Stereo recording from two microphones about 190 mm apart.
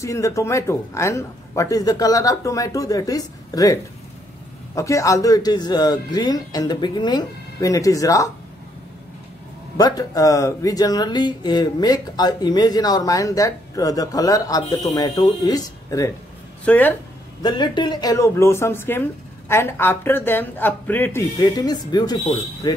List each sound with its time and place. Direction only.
0.0 s speech: 15° left (ahead or behind)
9.8 s speech: 20° left (ahead or behind)
17.4 s speech: 25° left (ahead or behind)